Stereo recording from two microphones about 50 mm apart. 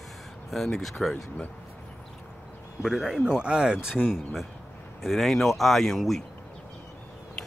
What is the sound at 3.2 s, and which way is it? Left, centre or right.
Speech, centre.